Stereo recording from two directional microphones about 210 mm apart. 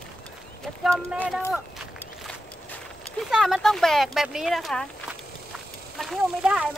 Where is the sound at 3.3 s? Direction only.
Centre (ahead or behind).